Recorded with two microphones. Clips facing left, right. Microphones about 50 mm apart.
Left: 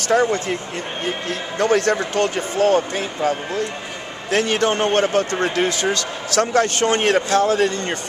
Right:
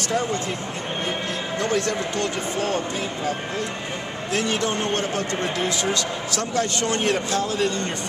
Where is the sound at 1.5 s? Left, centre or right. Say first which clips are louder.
Left 7 dB; left.